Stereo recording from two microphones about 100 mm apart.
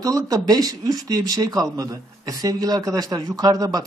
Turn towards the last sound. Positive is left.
turn(degrees=-40)  # may be behind; listen again after turning